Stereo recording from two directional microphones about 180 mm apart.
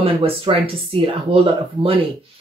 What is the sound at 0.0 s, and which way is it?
Speech, 30° right (ahead or behind).